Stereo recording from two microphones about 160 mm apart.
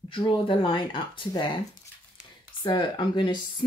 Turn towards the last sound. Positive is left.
turn(degrees=30)  # may be behind; listen again after turning